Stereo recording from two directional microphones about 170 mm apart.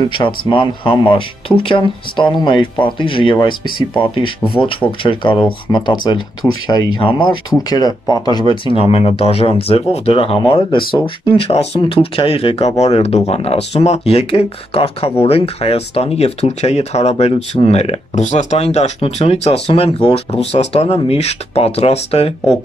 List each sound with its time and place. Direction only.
0.2 s speech: 30° left (ahead or behind)